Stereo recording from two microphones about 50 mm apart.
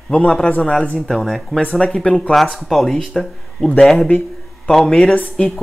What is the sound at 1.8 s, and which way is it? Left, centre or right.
Speech, centre.